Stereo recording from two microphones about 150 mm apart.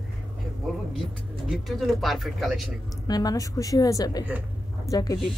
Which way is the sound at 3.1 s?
25° left (ahead or behind).